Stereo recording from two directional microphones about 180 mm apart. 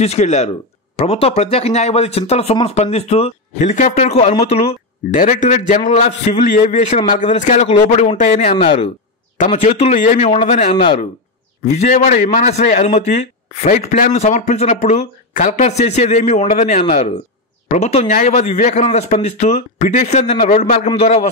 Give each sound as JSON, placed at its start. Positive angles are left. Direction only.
{"t": 0.0, "sound": "speech", "side_deg": 35}
{"t": 9.4, "sound": "speech", "side_deg": 40}